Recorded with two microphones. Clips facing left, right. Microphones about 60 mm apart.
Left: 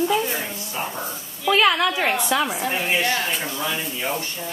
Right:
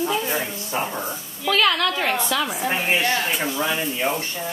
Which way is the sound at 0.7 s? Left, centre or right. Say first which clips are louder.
Right 4 dB; right.